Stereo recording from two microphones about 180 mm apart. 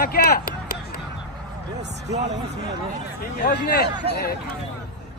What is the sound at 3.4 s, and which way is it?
Speech, 65° left (ahead or behind).